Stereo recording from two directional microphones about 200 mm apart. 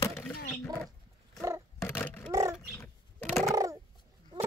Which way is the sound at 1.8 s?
10° left (ahead or behind).